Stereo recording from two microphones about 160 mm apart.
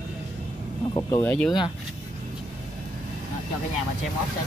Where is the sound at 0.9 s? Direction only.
15° left (ahead or behind).